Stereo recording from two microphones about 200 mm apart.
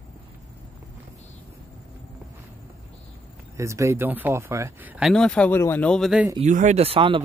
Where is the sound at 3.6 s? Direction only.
15° right (ahead or behind).